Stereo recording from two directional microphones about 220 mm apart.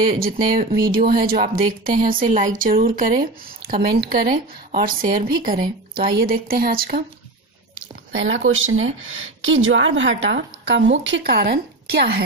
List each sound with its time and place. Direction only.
0.2 s speech: 40° right (ahead or behind)
8.1 s speech: 60° right (ahead or behind)